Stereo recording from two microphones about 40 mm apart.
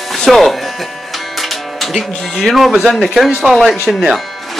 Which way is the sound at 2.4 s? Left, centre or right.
Centre.